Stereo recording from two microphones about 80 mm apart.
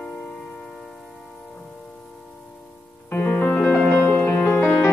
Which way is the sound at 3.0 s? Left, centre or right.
Left.